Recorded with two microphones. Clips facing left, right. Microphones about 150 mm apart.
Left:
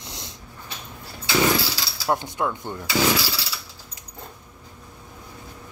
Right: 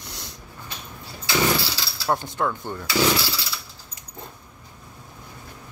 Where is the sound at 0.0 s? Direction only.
25° left (ahead or behind).